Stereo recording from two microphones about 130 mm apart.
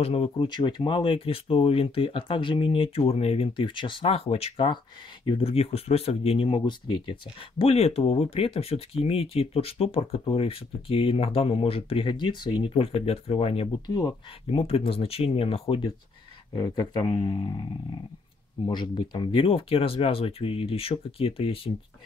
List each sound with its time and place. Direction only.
0.0 s speech: 50° left (ahead or behind)
0.6 s speech: 35° left (ahead or behind)
13.8 s speech: 30° left (ahead or behind)
14.5 s speech: 45° left (ahead or behind)
16.5 s speech: 30° left (ahead or behind)
18.7 s speech: 35° left (ahead or behind)